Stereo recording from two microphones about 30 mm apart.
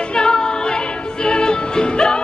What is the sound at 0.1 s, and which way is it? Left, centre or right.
Music, left.